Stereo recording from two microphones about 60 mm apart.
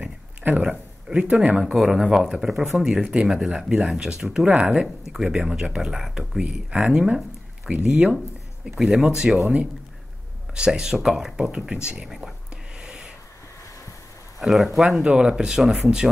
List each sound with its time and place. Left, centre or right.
0.4 s a sound: right
0.7 s speech: centre
1.7 s speech: centre
5.0 s speech: centre
6.4 s speech: centre
10.5 s speech: centre
12.1 s speech: centre
12.8 s a sound: centre
14.4 s speech: centre